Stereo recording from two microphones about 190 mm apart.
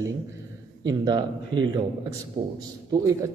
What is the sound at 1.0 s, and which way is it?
Speech, 25° right (ahead or behind).